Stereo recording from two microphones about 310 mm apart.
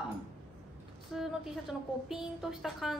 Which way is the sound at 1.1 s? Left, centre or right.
Centre.